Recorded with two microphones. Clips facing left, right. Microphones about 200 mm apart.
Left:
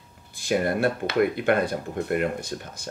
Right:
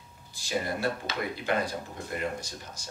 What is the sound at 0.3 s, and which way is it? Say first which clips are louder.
Speech: left 8 dB; 55° left (ahead or behind).